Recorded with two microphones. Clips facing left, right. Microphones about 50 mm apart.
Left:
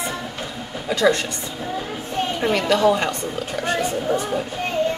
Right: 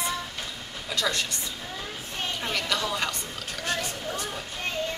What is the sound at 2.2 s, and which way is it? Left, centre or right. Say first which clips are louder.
A woman's voice: left 9 dB; centre.